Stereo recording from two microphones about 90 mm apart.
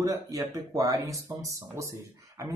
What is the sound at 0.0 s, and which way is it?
Speech, 40° right (ahead or behind).